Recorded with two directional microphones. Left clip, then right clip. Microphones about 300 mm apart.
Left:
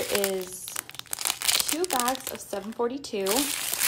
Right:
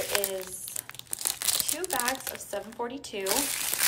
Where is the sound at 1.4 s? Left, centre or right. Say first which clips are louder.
Left 5 dB; centre.